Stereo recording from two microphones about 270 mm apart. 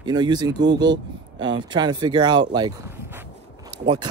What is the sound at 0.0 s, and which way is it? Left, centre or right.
Speech, centre.